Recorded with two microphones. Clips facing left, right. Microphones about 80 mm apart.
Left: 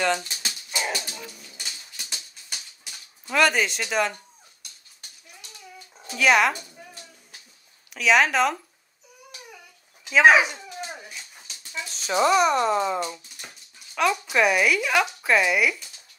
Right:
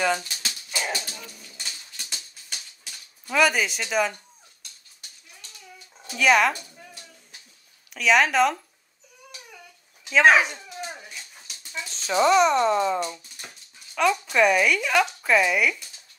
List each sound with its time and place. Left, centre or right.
0.2 s dog: left
0.7 s dog: centre
1.5 s pigeon: centre
3.3 s speech: centre
6.1 s speech: centre
7.9 s speech: centre
10.0 s dog: centre
11.4 s speech: centre